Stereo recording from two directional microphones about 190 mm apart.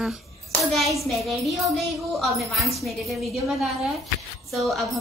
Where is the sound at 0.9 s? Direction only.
Centre (ahead or behind).